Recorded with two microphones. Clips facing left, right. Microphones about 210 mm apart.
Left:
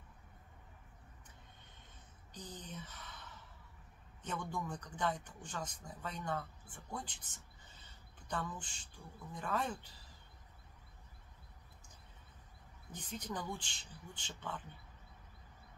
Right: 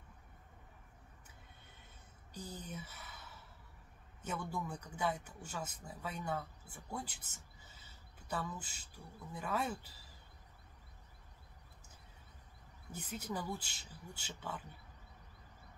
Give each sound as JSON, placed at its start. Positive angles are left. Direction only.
{"t": 2.3, "sound": "a sound", "side_deg": -10}
{"t": 4.2, "sound": "speech", "side_deg": -5}
{"t": 12.9, "sound": "speech", "side_deg": -10}